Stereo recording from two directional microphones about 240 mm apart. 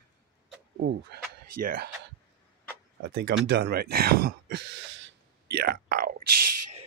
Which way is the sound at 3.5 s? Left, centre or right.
Right.